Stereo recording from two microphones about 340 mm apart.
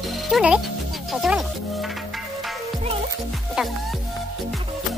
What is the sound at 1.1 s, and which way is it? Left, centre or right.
Music, centre.